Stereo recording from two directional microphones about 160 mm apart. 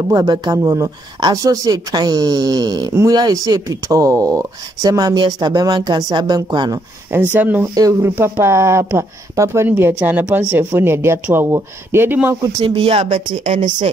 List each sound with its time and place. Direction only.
0.1 s speech: 25° right (ahead or behind)
7.1 s speech: 10° right (ahead or behind)
12.6 s speech: 35° right (ahead or behind)